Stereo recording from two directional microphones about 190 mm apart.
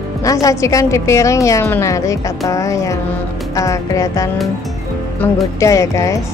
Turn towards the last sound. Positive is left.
turn(degrees=15)  # may be behind; listen again after turning